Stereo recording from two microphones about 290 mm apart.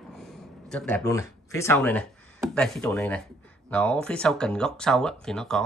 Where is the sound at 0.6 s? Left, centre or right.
Centre.